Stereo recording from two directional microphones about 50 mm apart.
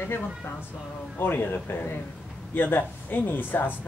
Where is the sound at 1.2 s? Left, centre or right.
Left.